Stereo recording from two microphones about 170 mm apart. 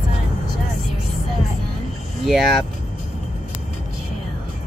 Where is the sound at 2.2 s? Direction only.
Centre (ahead or behind).